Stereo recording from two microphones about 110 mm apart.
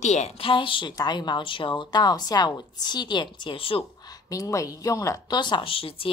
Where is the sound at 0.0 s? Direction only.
90° left.